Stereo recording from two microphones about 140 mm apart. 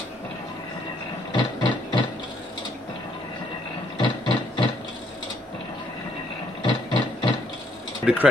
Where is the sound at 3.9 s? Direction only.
30° left (ahead or behind).